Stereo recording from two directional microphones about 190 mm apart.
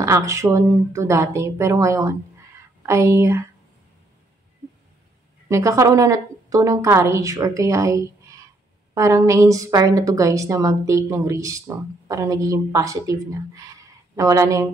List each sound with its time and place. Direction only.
0.0 s a woman's voice: 15° right (ahead or behind)
5.5 s a woman's voice: 15° right (ahead or behind)